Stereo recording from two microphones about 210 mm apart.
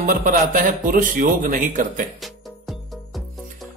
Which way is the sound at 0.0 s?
40° right (ahead or behind).